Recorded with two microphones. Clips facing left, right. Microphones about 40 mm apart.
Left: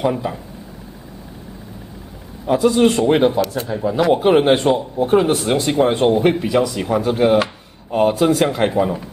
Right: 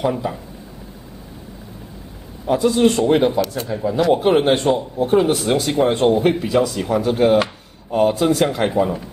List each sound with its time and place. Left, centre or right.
0.0 s speech: centre
2.4 s speech: centre
3.3 s speech: centre
3.6 s speech: centre